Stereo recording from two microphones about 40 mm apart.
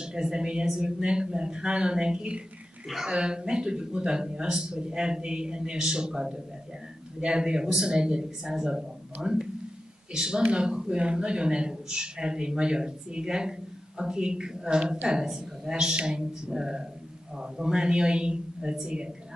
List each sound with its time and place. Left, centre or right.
0.0 s a man's voice: centre